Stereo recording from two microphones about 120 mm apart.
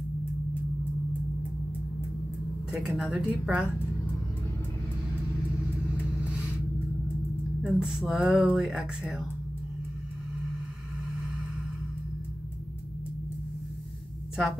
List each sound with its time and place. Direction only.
2.7 s speech: 5° right (ahead or behind)
7.6 s speech: 5° right (ahead or behind)